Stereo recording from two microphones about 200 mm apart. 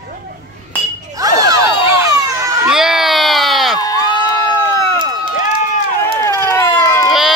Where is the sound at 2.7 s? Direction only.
5° right (ahead or behind).